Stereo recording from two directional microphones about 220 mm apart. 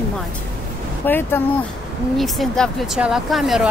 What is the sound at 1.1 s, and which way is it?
Speech, 10° left (ahead or behind).